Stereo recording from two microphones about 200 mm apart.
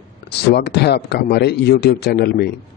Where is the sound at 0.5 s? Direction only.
55° left (ahead or behind).